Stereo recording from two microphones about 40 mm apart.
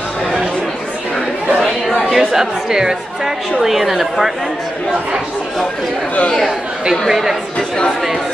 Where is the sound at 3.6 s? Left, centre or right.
Centre.